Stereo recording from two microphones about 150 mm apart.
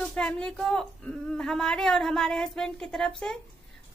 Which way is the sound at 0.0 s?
5° left (ahead or behind).